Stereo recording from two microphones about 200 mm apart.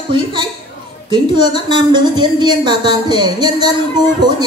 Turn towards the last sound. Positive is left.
turn(degrees=-20)  # may be behind; listen again after turning